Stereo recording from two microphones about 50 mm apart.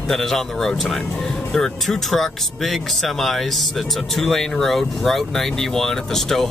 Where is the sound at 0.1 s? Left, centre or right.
Centre.